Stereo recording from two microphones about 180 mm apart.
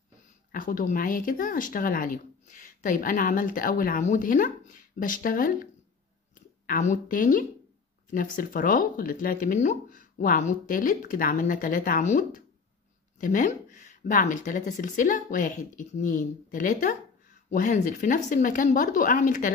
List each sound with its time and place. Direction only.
0.5 s speech: 50° left (ahead or behind)